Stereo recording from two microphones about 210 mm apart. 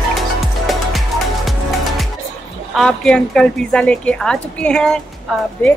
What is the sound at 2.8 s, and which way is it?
A woman's voice, 5° left (ahead or behind).